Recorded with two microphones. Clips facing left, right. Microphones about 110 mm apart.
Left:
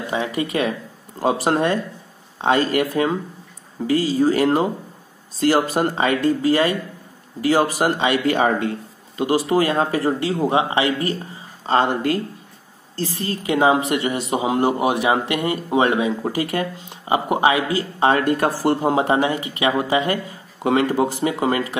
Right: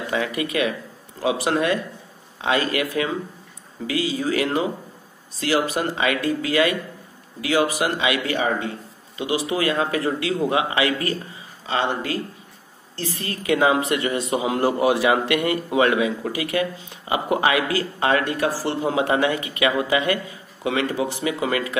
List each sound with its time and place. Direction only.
0.1 s speech: 25° left (ahead or behind)
5.8 s speech: 40° left (ahead or behind)
8.3 s speech: 55° left (ahead or behind)
9.5 s speech: 40° left (ahead or behind)
11.6 s speech: 40° left (ahead or behind)
13.1 s speech: 30° left (ahead or behind)
18.2 s speech: 50° left (ahead or behind)
19.0 s speech: 30° left (ahead or behind)
20.6 s speech: 50° left (ahead or behind)